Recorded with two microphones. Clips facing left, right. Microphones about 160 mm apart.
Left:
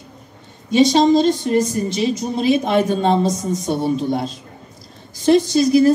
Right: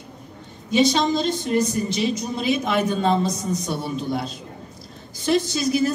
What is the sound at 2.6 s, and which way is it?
Speech, 35° left (ahead or behind).